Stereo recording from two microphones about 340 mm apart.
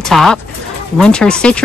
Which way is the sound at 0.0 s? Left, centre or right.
Centre.